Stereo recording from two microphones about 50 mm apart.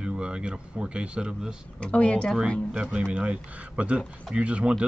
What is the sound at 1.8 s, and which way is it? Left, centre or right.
Speech, left.